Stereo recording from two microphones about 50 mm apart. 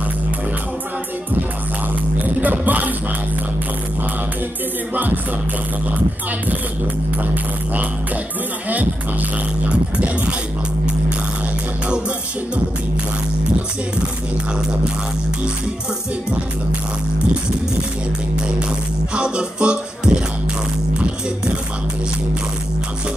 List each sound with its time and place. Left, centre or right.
2.2 s music: right
4.9 s music: right
8.6 s music: right
19.1 s music: right